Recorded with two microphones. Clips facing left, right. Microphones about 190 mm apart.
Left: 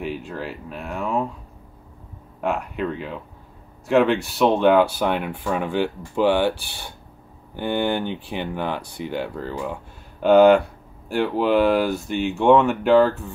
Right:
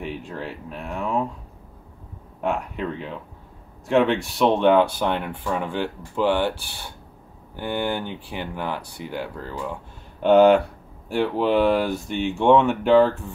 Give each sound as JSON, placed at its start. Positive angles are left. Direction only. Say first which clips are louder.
{"t": 0.0, "sound": "speech", "louder": "left 2 dB", "side_deg": 5}
{"t": 2.4, "sound": "speech", "louder": "left 1 dB", "side_deg": 5}
{"t": 7.5, "sound": "speech", "louder": "left 3 dB", "side_deg": 20}
{"t": 10.2, "sound": "speech", "louder": "left 1 dB", "side_deg": 0}